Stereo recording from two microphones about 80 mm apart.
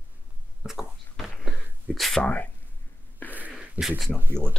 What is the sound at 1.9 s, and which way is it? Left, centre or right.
Speech, centre.